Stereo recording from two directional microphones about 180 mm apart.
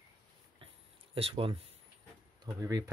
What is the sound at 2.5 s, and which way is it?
Speech, 20° right (ahead or behind).